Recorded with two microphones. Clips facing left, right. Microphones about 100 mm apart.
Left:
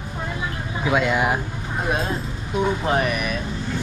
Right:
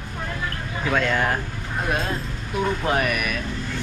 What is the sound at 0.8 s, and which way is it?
Speech, 10° left (ahead or behind).